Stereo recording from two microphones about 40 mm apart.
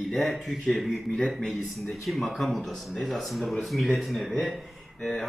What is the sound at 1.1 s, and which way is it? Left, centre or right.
Speech, centre.